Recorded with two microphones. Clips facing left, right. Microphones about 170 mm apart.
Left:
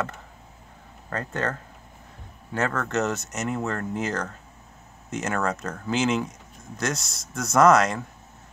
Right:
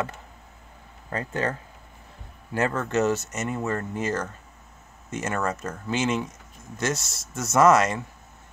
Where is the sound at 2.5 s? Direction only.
15° right (ahead or behind).